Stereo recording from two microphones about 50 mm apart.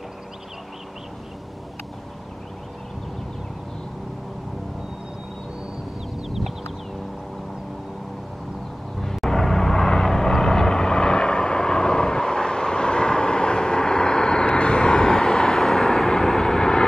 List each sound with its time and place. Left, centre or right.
9.0 s vehicle: centre